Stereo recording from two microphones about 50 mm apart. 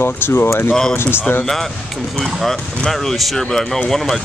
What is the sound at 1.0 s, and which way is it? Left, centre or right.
Speech, left.